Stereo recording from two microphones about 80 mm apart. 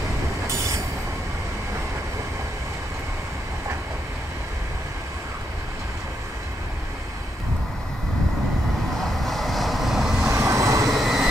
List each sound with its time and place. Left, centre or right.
9.2 s vehicle: centre
10.2 s vehicle: right
10.9 s vehicle: centre